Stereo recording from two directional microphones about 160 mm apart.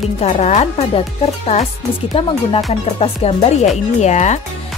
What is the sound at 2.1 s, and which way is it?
Speech, 40° left (ahead or behind).